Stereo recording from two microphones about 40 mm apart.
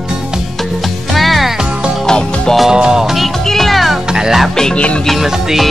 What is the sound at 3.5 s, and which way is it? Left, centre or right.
Music, centre.